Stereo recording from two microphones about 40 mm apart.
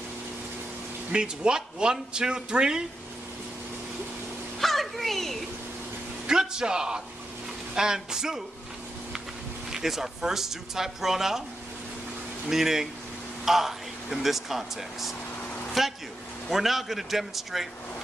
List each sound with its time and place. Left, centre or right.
1.1 s a man's voice: right
4.6 s a sound: centre
6.2 s speech: centre
9.7 s speech: centre
12.4 s a man's voice: centre